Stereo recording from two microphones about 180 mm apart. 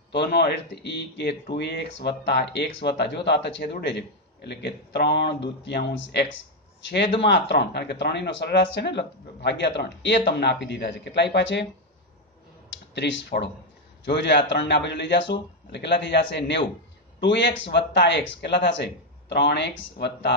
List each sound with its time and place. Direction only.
0.1 s speech: 60° left (ahead or behind)
7.2 s speech: 70° left (ahead or behind)
12.9 s speech: 75° left (ahead or behind)